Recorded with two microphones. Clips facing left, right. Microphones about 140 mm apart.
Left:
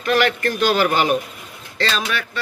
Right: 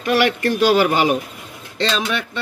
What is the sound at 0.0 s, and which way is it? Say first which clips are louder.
A man's voice: right 1 dB; 15° right (ahead or behind).